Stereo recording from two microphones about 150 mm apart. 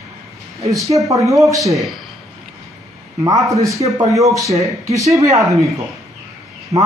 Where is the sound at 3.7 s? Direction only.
20° right (ahead or behind).